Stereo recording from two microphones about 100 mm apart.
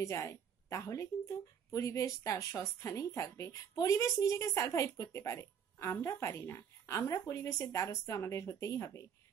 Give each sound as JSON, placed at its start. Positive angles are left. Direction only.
{"t": 0.0, "sound": "speech", "side_deg": 30}